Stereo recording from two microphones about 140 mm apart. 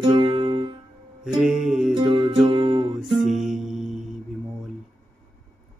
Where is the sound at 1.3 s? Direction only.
5° right (ahead or behind).